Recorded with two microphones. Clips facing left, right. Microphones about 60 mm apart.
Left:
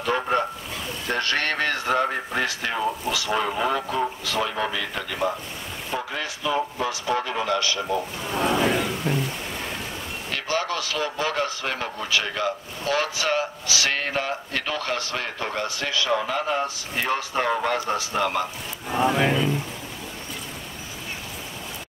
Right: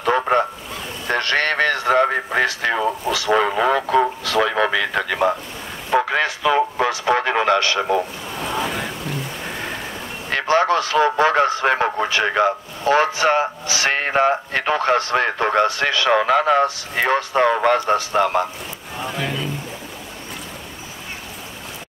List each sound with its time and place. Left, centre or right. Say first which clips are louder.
1.1 s a man's voice: right 6 dB; right
4.0 s a man's voice: right 7 dB; right
10.3 s a man's voice: right 10 dB; right
18.9 s speech: left 5 dB; left